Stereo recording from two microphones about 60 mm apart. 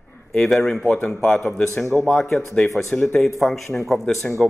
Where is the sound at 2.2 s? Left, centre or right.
Left.